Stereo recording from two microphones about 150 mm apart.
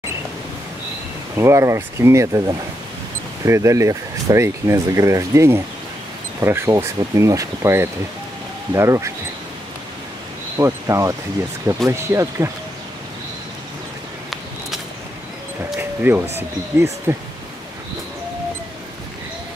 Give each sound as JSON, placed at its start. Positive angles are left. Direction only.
{"t": 1.3, "sound": "speech", "side_deg": -20}
{"t": 10.6, "sound": "speech", "side_deg": -20}
{"t": 16.0, "sound": "speech", "side_deg": -15}